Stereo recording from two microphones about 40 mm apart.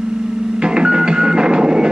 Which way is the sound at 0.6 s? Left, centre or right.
Centre.